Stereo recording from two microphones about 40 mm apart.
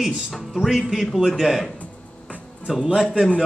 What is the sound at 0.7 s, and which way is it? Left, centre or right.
A man's voice, centre.